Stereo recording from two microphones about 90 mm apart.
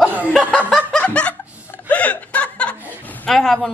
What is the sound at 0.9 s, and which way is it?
Snicker, 10° left (ahead or behind).